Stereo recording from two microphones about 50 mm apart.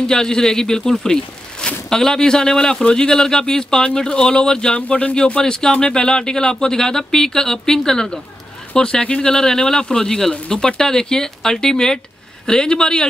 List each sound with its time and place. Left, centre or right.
0.0 s speech: centre
1.0 s a sound: centre
1.9 s speech: centre
5.1 s speech: centre